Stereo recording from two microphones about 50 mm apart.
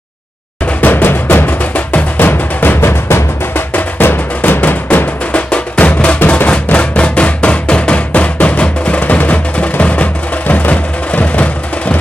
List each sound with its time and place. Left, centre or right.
0.7 s music: left
2.8 s music: left
3.7 s music: left
5.3 s drum: left
6.1 s music: left